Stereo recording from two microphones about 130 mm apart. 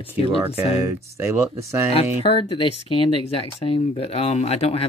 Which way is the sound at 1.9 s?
50° left (ahead or behind).